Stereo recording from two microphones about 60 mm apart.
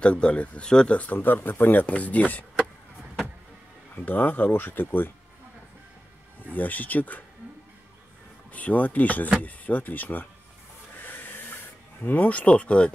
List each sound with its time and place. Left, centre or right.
0.0 s speech: centre
3.9 s speech: left
6.5 s speech: left
8.5 s speech: left
11.0 s a sound: left